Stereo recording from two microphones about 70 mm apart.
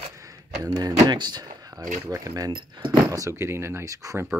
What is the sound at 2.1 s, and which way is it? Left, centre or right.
Speech, right.